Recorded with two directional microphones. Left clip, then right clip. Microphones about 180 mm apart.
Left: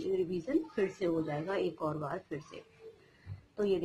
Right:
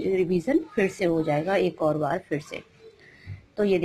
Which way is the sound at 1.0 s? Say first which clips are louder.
Right 10 dB; 30° right (ahead or behind).